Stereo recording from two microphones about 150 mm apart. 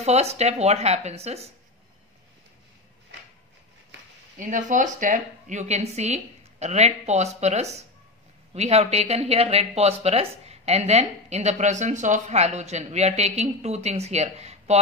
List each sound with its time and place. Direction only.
0.0 s speech: 45° right (ahead or behind)
4.4 s speech: 60° right (ahead or behind)